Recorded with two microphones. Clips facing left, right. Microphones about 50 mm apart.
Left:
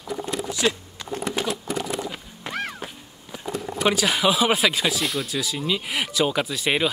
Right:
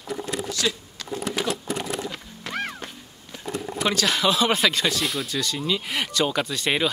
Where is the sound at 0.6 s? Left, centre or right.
Left.